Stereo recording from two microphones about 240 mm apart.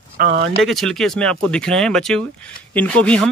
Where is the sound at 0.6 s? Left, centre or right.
Centre.